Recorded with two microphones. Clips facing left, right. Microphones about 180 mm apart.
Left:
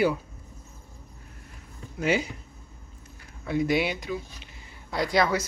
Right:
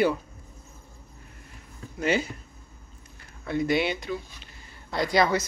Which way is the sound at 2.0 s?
10° left (ahead or behind).